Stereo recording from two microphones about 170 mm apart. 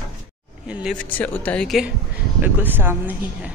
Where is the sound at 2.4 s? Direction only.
10° right (ahead or behind).